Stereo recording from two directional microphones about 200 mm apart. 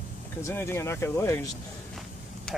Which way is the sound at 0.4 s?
15° left (ahead or behind).